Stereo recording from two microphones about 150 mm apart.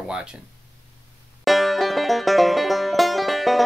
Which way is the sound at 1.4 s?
Centre (ahead or behind).